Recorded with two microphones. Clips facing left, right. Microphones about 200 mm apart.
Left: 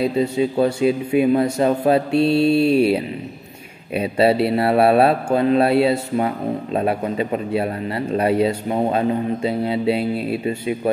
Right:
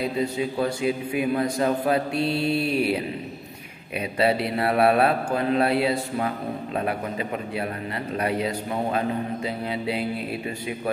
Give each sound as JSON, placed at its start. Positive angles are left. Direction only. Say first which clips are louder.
{"t": 0.2, "sound": "a man's voice", "louder": "left 7 dB", "side_deg": 25}